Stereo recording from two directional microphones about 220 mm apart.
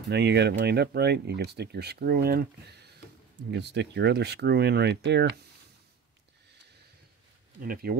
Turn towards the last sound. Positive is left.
turn(degrees=-40)  # may be behind; listen again after turning